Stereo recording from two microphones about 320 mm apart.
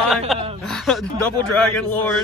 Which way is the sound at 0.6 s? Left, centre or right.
Centre.